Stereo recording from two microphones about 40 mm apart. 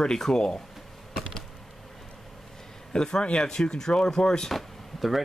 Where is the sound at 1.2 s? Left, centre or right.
Centre.